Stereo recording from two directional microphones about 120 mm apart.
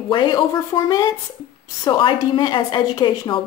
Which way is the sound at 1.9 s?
45° left (ahead or behind).